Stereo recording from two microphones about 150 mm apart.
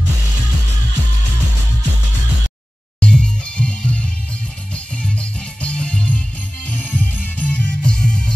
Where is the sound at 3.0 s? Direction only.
5° left (ahead or behind).